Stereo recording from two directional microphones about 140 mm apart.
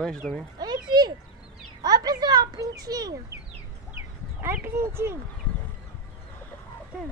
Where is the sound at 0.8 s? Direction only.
30° right (ahead or behind).